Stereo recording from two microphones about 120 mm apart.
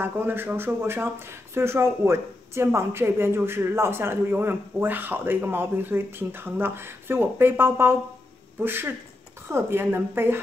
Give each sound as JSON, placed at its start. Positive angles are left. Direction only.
{"t": 0.0, "sound": "speech", "side_deg": -15}